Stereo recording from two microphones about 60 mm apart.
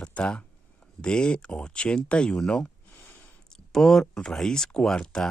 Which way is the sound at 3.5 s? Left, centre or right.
Centre.